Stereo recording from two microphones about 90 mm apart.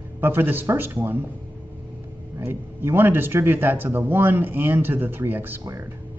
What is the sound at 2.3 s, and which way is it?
Speech, 25° right (ahead or behind).